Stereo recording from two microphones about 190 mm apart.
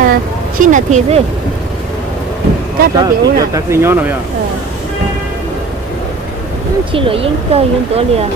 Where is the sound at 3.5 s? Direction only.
15° right (ahead or behind).